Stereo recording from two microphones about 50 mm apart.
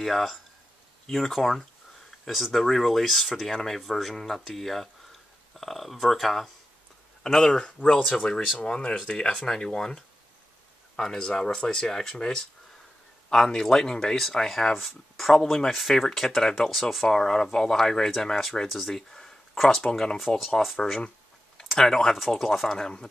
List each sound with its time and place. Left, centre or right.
0.0 s speech: centre
20.6 s speech: centre